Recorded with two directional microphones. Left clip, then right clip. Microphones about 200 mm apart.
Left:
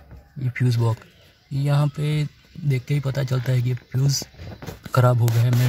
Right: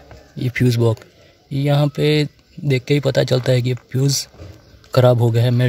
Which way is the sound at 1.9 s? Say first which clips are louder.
Right 13 dB; 30° right (ahead or behind).